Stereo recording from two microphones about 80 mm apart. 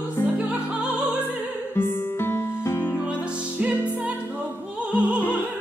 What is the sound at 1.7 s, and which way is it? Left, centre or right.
Music, left.